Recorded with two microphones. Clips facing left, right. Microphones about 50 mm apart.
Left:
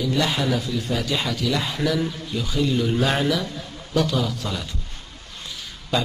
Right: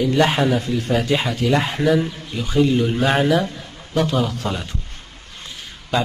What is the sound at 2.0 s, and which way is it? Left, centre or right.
A man's voice, right.